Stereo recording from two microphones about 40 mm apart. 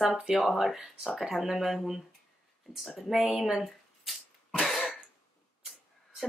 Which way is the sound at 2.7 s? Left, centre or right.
Centre.